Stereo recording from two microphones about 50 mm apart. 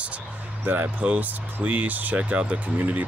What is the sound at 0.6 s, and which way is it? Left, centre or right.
Speech, right.